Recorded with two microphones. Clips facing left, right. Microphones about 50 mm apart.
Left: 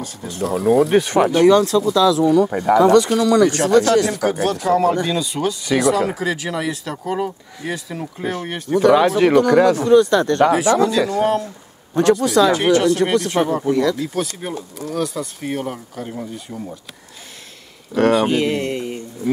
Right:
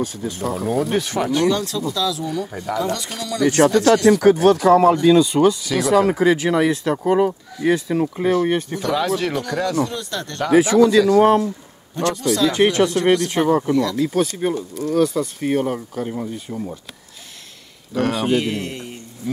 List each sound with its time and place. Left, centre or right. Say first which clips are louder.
0.2 s speech: left 3 dB; centre
2.5 s speech: left 10 dB; left
2.9 s speech: left 12 dB; centre
3.4 s speech: right 3 dB; centre
3.8 s speech: right 4 dB; centre
4.6 s speech: right 3 dB; centre
8.7 s speech: left 8 dB; centre; by 10.5 s left
10.5 s speech: right 3 dB; centre
12.0 s speech: left 5 dB; centre
12.5 s speech: left 1 dB; centre
17.9 s speech: left 4 dB; centre